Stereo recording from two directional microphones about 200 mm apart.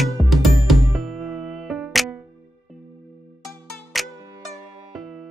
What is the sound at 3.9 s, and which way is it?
Music, centre (ahead or behind).